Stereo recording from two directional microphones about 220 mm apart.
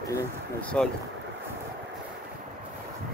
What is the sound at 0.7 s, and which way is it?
Speech, 5° left (ahead or behind).